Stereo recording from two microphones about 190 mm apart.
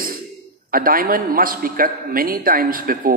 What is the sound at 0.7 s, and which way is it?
A man's voice, 50° right (ahead or behind).